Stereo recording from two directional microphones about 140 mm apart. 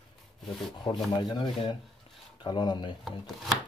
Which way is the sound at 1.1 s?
30° left (ahead or behind).